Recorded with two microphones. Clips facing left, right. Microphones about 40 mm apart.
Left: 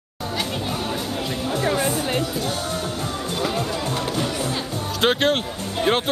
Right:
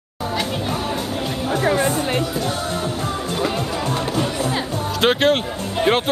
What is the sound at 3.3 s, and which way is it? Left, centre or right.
Music, centre.